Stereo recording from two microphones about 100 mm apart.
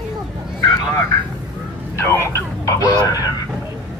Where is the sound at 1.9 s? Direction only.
25° left (ahead or behind).